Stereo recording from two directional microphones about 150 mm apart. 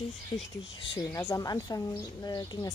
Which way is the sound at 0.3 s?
30° left (ahead or behind).